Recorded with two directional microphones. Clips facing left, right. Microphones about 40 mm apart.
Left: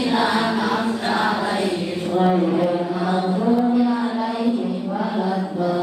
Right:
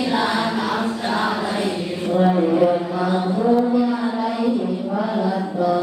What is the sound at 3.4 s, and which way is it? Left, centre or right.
Music, centre.